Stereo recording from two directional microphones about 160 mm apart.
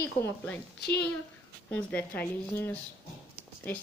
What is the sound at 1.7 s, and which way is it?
A woman's voice, 10° left (ahead or behind).